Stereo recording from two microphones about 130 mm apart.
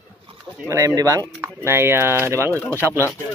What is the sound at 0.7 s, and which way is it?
Speech, 25° right (ahead or behind).